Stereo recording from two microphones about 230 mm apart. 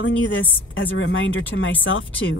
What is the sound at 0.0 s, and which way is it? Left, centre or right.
A woman's voice, left.